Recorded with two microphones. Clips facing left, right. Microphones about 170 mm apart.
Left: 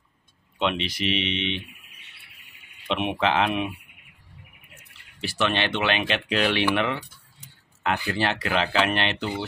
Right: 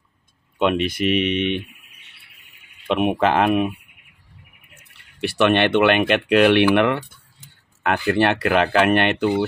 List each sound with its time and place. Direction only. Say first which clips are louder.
0.6 s speech: right 7 dB; 50° right (ahead or behind)
2.9 s speech: right 6 dB; 50° right (ahead or behind)
5.2 s speech: right 8 dB; 60° right (ahead or behind)